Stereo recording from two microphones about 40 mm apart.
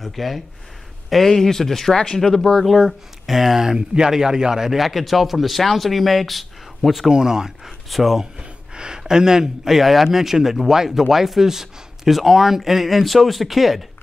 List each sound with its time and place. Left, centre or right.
0.0 s speech: centre
7.1 s speech: centre
8.4 s speech: right; by 13.8 s centre